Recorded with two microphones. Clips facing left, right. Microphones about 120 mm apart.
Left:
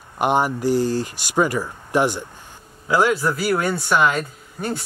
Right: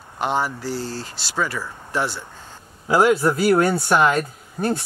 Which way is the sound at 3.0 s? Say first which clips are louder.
Right 3 dB; 25° right (ahead or behind).